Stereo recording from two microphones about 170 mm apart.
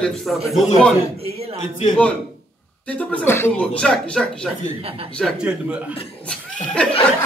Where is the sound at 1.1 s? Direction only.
35° right (ahead or behind).